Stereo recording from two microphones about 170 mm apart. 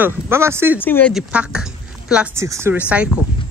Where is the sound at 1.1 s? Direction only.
5° right (ahead or behind).